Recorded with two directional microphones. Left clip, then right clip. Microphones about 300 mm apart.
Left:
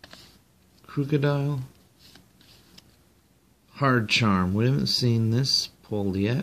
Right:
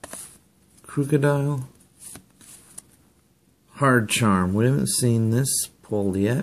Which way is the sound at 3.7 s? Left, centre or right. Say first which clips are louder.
Right 2 dB; centre.